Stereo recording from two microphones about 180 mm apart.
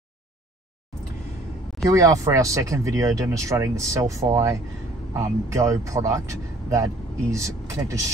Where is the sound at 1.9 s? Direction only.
20° right (ahead or behind).